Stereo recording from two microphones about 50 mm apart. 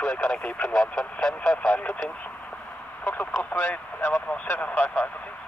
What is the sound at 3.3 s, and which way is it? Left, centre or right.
Speech, left.